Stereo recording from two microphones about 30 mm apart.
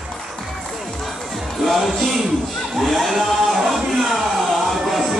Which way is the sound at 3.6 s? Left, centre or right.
Centre.